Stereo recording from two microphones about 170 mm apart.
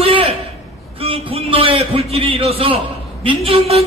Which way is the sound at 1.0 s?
35° right (ahead or behind).